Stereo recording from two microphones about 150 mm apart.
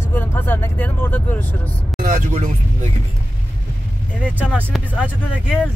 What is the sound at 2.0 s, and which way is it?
Music, 60° right (ahead or behind).